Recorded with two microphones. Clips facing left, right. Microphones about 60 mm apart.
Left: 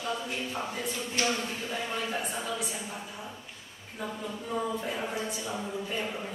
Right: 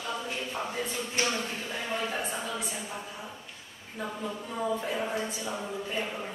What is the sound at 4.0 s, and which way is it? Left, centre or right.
Speech, centre.